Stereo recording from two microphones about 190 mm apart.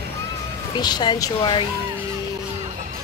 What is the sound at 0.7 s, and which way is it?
Speech, 20° left (ahead or behind).